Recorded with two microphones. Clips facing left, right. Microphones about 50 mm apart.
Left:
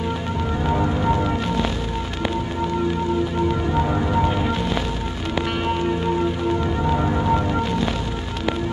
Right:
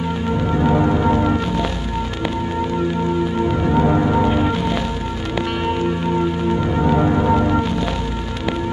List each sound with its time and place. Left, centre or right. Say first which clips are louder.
0.6 s music: right 5 dB; centre
3.6 s music: right 5 dB; centre
6.6 s music: right 4 dB; centre